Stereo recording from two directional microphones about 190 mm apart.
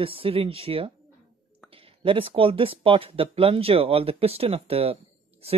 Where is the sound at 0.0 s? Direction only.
30° right (ahead or behind).